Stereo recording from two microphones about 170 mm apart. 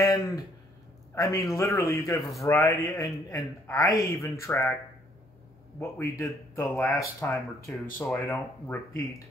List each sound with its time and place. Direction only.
0.1 s speech: 20° left (ahead or behind)
5.8 s speech: 15° left (ahead or behind)